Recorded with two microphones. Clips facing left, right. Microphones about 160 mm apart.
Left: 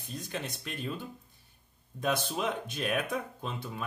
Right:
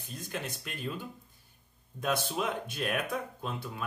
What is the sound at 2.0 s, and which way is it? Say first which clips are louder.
Speech: left 1 dB; centre (ahead or behind).